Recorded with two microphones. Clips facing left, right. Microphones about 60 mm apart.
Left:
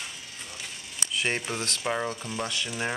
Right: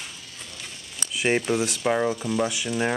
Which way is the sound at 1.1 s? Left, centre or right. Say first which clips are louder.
Right 7 dB; centre.